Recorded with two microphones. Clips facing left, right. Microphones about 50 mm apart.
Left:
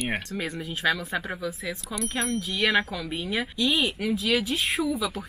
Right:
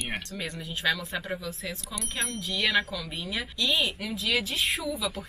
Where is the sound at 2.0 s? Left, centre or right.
Centre.